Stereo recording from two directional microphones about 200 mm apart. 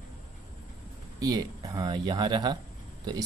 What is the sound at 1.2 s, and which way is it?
Speech, 20° right (ahead or behind).